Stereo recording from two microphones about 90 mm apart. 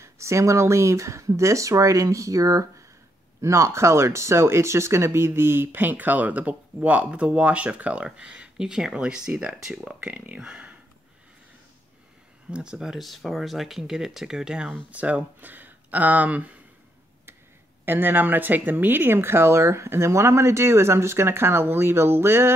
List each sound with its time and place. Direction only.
0.0 s speech: 30° right (ahead or behind); by 10.5 s 15° right (ahead or behind)
10.5 s a sound: 10° right (ahead or behind)
12.4 s speech: 10° right (ahead or behind)
17.8 s speech: 20° right (ahead or behind)